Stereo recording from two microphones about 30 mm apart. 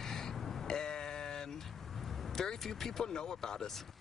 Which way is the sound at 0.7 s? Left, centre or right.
Left.